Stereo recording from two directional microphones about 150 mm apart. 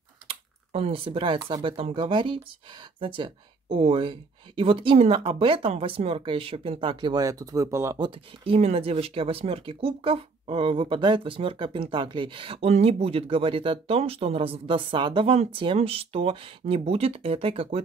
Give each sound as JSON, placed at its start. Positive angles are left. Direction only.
{"t": 0.3, "sound": "speech", "side_deg": -40}
{"t": 8.0, "sound": "speech", "side_deg": -40}